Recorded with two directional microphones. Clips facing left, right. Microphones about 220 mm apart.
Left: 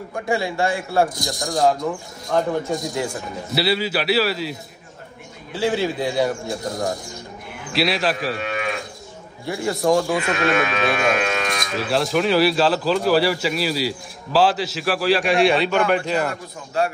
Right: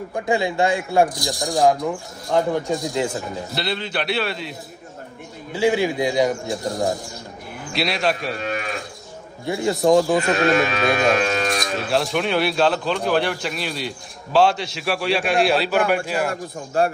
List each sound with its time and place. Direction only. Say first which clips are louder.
0.1 s a man's voice: right 1 dB; 20° right (ahead or behind)
3.5 s speech: left 6 dB; 5° left (ahead or behind)
5.5 s a man's voice: right 2 dB; 15° right (ahead or behind)
7.7 s speech: left 1 dB; centre (ahead or behind)
8.4 s livestock: even; 40° right (ahead or behind)
9.5 s speech: right 2 dB; 20° right (ahead or behind)
10.1 s speech: right 2 dB; 35° right (ahead or behind)
11.7 s speech: left 4 dB; centre (ahead or behind)